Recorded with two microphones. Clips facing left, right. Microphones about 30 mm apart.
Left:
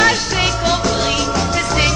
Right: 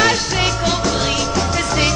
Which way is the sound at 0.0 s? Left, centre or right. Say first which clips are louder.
Left 1 dB; centre.